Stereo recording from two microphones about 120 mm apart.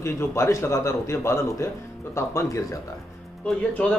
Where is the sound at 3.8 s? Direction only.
10° left (ahead or behind).